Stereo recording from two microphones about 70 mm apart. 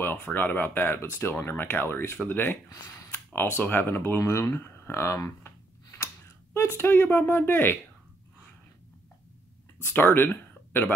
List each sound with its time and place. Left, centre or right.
0.0 s speech: left
2.7 s speech: left
3.3 s speech: left
4.2 s a sound: left
6.5 s speech: left
9.8 s speech: left